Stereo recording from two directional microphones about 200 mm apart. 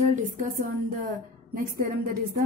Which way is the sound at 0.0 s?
40° right (ahead or behind).